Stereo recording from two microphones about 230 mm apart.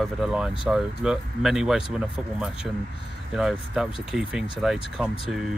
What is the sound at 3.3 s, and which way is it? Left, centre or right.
Speech, centre.